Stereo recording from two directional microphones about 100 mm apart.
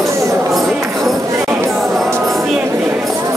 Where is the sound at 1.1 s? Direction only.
30° right (ahead or behind).